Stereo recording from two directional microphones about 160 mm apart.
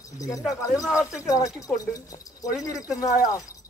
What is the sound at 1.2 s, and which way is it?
Speech, 20° left (ahead or behind).